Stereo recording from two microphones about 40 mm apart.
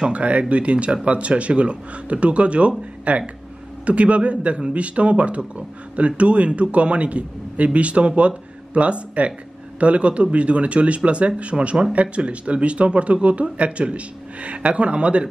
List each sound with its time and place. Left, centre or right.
0.1 s speech: right